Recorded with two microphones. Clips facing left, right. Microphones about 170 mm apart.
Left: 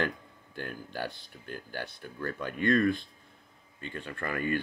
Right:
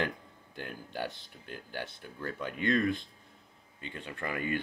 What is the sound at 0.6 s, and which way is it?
Speech, 20° right (ahead or behind).